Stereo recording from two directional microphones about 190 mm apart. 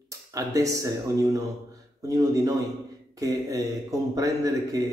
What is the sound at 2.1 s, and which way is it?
Speech, 20° right (ahead or behind).